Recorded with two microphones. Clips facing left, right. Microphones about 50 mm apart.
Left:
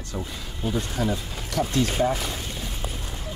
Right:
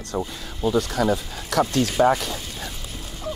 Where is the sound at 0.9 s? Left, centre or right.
Right.